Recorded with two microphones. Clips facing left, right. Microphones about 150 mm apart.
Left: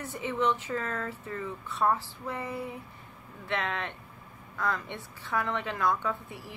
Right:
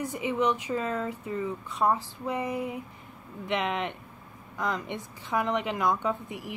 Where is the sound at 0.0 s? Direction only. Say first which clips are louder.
Right 2 dB; 15° right (ahead or behind).